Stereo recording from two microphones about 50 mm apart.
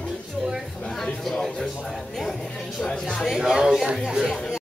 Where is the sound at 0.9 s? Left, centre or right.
Centre.